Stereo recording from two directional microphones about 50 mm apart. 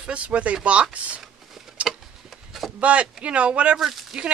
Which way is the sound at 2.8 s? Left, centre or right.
Right.